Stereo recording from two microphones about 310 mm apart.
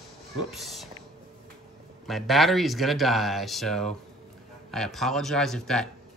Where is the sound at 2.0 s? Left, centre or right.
Centre.